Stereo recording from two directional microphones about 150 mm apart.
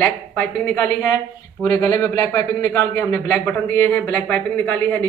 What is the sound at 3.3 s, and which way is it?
Speech, 10° left (ahead or behind).